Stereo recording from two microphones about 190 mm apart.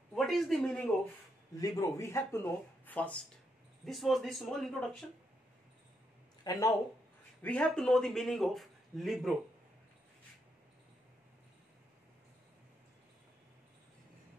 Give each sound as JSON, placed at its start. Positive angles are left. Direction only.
{"t": 0.1, "sound": "speech", "side_deg": 0}
{"t": 1.6, "sound": "a man's voice", "side_deg": 15}
{"t": 6.4, "sound": "speech", "side_deg": 20}
{"t": 7.4, "sound": "a man's voice", "side_deg": 5}